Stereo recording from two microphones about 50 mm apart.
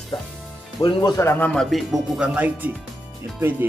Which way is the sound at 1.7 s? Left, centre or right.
Centre.